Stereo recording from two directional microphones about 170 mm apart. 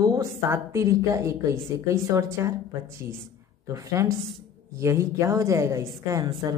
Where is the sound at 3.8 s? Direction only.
15° right (ahead or behind).